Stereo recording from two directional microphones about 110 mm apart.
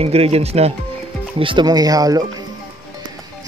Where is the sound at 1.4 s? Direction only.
45° right (ahead or behind).